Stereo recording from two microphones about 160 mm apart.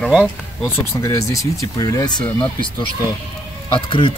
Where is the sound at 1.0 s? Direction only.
20° left (ahead or behind).